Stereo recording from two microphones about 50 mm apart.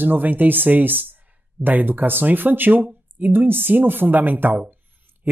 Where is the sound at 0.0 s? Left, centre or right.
Right.